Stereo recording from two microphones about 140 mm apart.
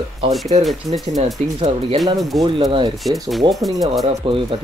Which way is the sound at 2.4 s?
35° right (ahead or behind).